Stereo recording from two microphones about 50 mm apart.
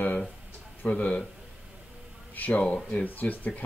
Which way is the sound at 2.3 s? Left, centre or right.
Left.